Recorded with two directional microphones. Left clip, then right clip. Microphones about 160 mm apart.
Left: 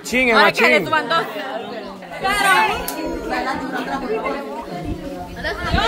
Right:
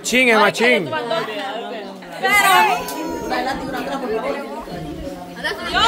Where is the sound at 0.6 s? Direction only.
75° left (ahead or behind); by 1.2 s 90° left.